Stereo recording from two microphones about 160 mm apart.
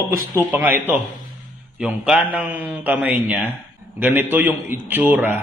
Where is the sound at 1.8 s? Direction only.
5° right (ahead or behind).